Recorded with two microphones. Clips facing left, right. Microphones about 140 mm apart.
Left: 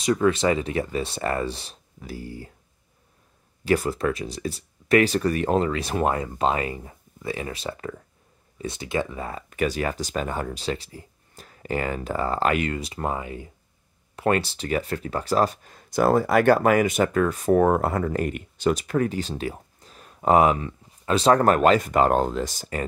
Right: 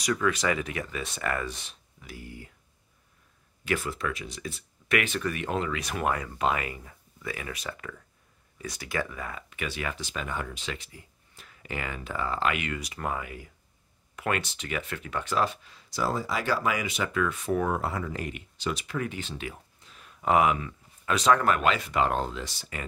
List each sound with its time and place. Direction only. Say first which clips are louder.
0.0 s speech: left 6 dB; 30° left (ahead or behind)
3.6 s speech: left 8 dB; 35° left (ahead or behind)
9.5 s speech: left 11 dB; 40° left (ahead or behind)